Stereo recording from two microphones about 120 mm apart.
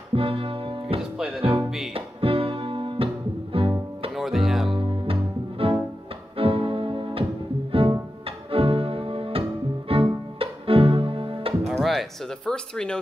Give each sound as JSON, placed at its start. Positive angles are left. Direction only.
{"t": 0.1, "sound": "music", "side_deg": -50}
{"t": 1.1, "sound": "music", "side_deg": -5}
{"t": 1.4, "sound": "music", "side_deg": -50}
{"t": 4.2, "sound": "music", "side_deg": 0}
{"t": 4.6, "sound": "music", "side_deg": -50}
{"t": 8.5, "sound": "music", "side_deg": -50}
{"t": 9.8, "sound": "cello", "side_deg": -50}
{"t": 11.6, "sound": "music", "side_deg": 0}